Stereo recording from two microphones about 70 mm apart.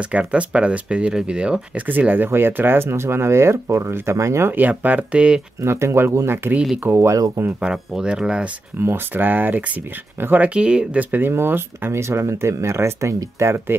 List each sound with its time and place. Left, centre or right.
0.0 s speech: centre
2.0 s speech: right
4.5 s speech: right
5.6 s speech: right
7.2 s speech: right
7.6 s speech: centre
8.7 s speech: right
10.5 s speech: centre; by 13.7 s right